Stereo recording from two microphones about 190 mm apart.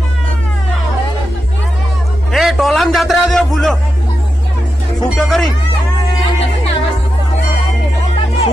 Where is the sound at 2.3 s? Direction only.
Centre (ahead or behind).